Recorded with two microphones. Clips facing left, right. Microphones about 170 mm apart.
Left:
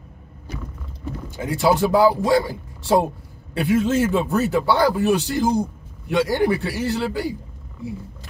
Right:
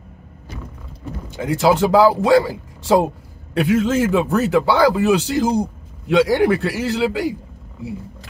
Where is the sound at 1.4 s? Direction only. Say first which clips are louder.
Right 3 dB; 75° right (ahead or behind).